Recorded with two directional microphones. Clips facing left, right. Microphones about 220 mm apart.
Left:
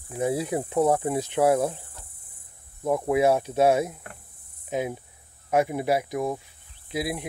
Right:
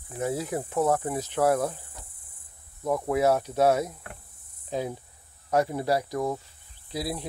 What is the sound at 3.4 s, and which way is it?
Speech, 25° left (ahead or behind).